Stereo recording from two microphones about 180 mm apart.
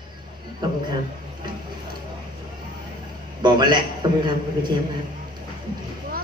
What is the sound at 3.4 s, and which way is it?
A man's voice, 25° right (ahead or behind).